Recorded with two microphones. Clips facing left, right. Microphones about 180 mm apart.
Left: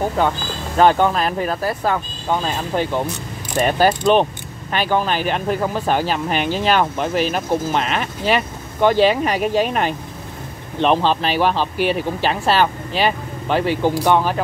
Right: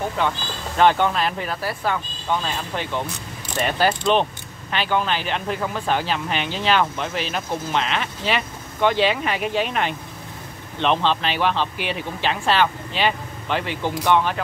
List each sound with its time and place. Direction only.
0.2 s speech: 40° left (ahead or behind)